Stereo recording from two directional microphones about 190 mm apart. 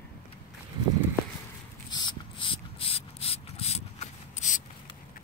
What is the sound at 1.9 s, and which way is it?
Ratchet, 25° left (ahead or behind).